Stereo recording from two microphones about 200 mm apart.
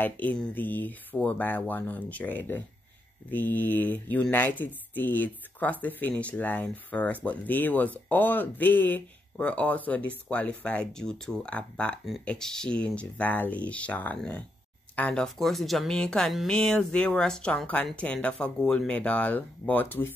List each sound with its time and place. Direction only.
0.0 s speech: 10° left (ahead or behind)